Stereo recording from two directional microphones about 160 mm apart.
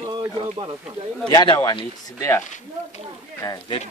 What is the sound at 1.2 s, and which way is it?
Speech, 30° left (ahead or behind).